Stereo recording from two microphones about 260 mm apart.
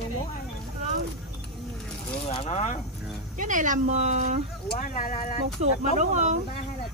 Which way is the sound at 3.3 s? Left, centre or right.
Right.